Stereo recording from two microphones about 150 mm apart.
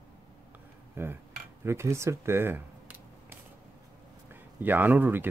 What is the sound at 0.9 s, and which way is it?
Speech, 15° right (ahead or behind).